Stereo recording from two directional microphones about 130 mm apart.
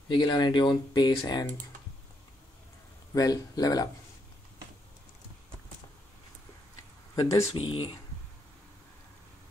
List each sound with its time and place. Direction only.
0.1 s speech: 35° left (ahead or behind)
3.2 s speech: 30° left (ahead or behind)
7.2 s speech: 25° left (ahead or behind)
7.5 s speech: 40° left (ahead or behind)